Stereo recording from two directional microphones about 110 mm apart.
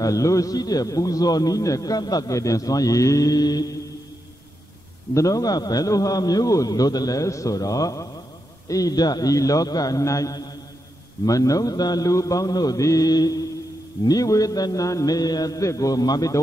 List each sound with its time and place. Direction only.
0.0 s a man's voice: 30° left (ahead or behind)
5.1 s a man's voice: 30° left (ahead or behind)